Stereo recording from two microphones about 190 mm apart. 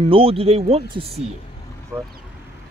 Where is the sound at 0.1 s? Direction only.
30° right (ahead or behind).